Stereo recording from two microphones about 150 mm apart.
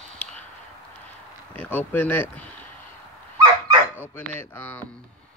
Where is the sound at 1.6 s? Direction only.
10° left (ahead or behind).